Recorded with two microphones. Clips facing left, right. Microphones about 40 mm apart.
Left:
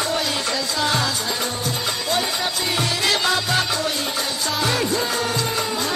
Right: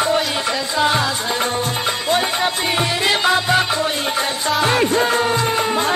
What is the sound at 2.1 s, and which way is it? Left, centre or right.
Music, right.